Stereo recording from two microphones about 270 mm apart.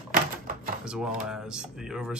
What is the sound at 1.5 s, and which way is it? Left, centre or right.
Speech, centre.